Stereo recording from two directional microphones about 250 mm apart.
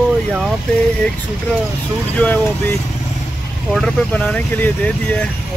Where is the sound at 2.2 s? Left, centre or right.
Centre.